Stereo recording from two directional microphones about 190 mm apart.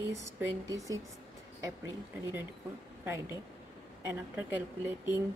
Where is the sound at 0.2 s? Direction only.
15° right (ahead or behind).